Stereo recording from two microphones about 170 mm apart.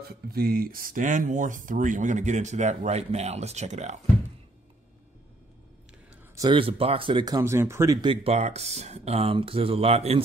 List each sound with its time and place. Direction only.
0.1 s speech: 65° right (ahead or behind); by 4.0 s 45° right (ahead or behind)
6.3 s speech: 25° right (ahead or behind)